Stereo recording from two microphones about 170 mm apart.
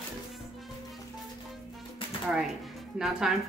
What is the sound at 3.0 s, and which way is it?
Speech, 5° right (ahead or behind).